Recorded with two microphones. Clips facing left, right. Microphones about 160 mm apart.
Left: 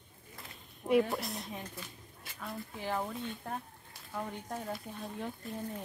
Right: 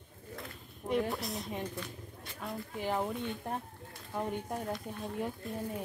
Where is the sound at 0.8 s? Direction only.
5° left (ahead or behind).